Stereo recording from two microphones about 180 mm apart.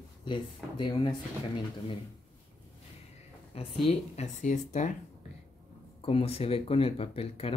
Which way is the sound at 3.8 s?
40° left (ahead or behind).